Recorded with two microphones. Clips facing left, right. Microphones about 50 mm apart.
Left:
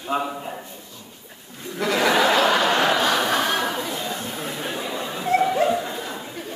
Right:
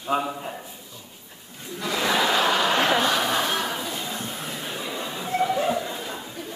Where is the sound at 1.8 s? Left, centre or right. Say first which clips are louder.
Left 4 dB; left.